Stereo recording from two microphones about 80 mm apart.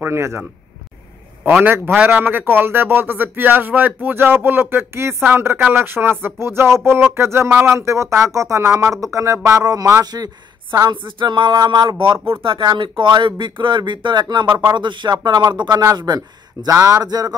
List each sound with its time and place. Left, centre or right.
0.0 s speech: right
2.0 s speech: right
10.9 s a sound: right
12.4 s speech: right
14.7 s a sound: right
16.0 s speech: right